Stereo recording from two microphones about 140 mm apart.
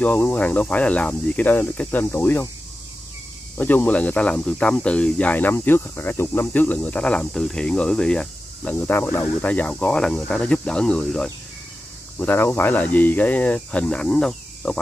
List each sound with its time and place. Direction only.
0.0 s speech: 10° left (ahead or behind)
3.5 s speech: 10° left (ahead or behind)